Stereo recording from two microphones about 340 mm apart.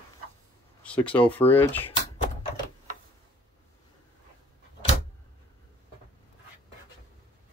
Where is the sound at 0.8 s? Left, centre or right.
Centre.